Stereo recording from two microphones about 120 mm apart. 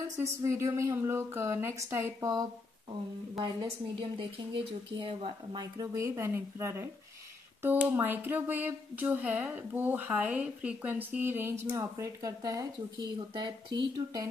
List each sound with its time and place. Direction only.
0.2 s a woman's voice: 25° right (ahead or behind)
3.9 s speech: 45° right (ahead or behind)
5.6 s a woman's voice: 25° right (ahead or behind)